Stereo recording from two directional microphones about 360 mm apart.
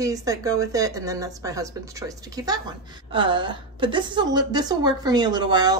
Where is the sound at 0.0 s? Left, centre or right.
Centre.